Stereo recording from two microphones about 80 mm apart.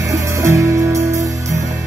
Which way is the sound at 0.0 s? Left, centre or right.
Right.